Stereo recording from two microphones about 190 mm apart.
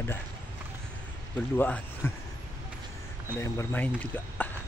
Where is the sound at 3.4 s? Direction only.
10° left (ahead or behind).